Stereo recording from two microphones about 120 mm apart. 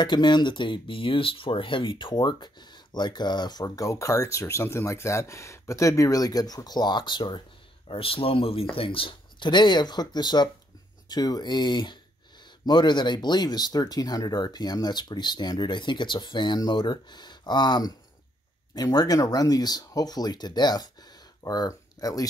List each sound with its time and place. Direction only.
0.0 s speech: 40° left (ahead or behind)